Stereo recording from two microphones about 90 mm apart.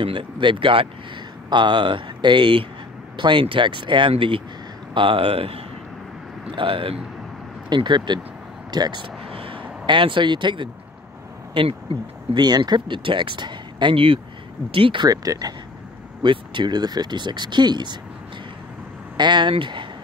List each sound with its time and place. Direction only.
0.0 s speech: 70° right (ahead or behind)
1.5 s speech: 60° right (ahead or behind); by 5.6 s 90° right
6.5 s speech: 75° right (ahead or behind)
7.7 s speech: 55° right (ahead or behind)
9.3 s vehicle: 85° right; by 10.7 s 60° right (ahead or behind)
11.5 s speech: 90° right
12.4 s speech: 50° right (ahead or behind); by 14.2 s 85° right
14.7 s speech: 70° right (ahead or behind)
15.0 s speech: 45° right (ahead or behind)
16.2 s speech: 60° right (ahead or behind)
19.1 s speech: 55° right (ahead or behind)